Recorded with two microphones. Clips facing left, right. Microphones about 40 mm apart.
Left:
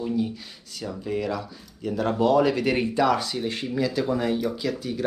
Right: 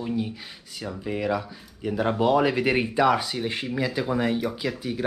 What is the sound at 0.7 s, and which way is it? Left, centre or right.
Speech, centre.